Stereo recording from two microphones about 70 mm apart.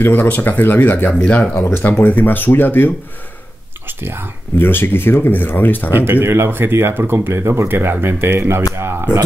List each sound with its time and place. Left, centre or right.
0.0 s speech: left
1.2 s speech: centre
1.5 s speech: left
3.8 s speech: right
4.6 s speech: left
5.9 s speech: right